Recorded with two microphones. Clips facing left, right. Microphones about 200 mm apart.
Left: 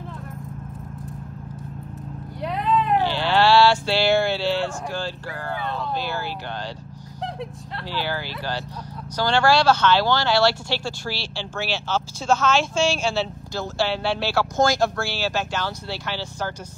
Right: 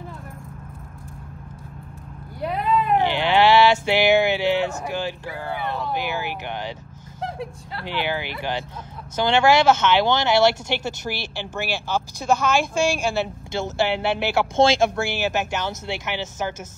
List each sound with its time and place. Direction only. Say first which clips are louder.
2.4 s vehicle: right 1 dB; 5° right (ahead or behind)
3.0 s a sound: right 2 dB; 20° right (ahead or behind)
5.9 s speech: right 1 dB; 15° right (ahead or behind)
7.8 s speech: right 2 dB; 20° right (ahead or behind)